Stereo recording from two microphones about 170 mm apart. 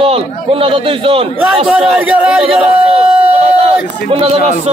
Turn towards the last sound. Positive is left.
turn(degrees=-40)  # may be behind; listen again after turning